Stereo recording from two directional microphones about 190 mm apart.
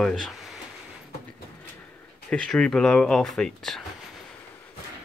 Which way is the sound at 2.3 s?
5° left (ahead or behind).